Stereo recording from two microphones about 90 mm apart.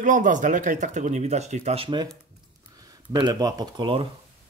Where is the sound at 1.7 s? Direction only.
75° right (ahead or behind).